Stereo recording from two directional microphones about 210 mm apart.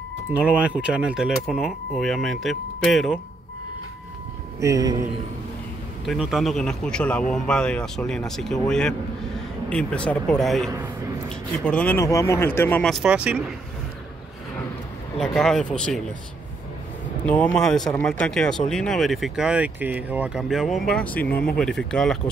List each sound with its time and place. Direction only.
0.3 s speech: 5° right (ahead or behind)
4.6 s speech: 15° right (ahead or behind)
6.0 s speech: centre (ahead or behind)
15.1 s speech: centre (ahead or behind)
17.3 s speech: 5° left (ahead or behind)